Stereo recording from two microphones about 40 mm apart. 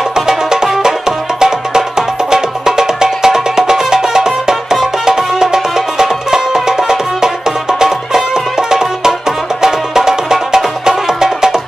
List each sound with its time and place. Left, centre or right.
0.1 s music: centre